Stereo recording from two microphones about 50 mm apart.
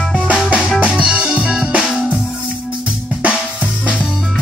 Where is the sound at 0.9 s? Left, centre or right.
Right.